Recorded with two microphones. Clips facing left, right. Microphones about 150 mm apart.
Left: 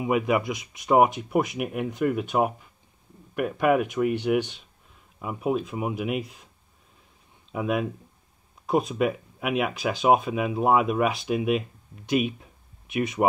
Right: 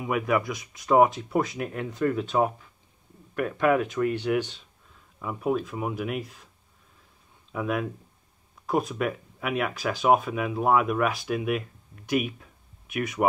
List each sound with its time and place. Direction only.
0.0 s speech: 20° left (ahead or behind)
7.5 s speech: 20° left (ahead or behind)